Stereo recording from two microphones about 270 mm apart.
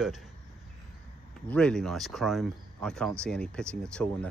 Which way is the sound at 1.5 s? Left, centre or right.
Centre.